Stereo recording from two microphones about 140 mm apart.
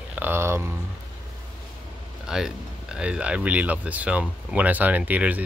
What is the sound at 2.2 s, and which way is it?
Speech, 5° right (ahead or behind).